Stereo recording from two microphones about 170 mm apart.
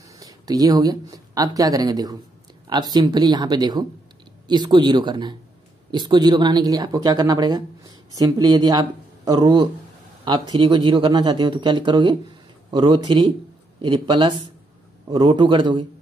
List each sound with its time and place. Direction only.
0.2 s speech: 20° right (ahead or behind)